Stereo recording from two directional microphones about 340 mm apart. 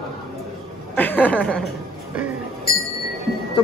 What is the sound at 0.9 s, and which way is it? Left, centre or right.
Speech, centre.